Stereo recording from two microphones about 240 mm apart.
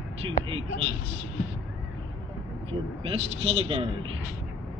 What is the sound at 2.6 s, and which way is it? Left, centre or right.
Speech, right.